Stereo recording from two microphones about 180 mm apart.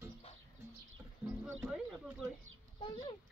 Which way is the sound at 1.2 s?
5° right (ahead or behind).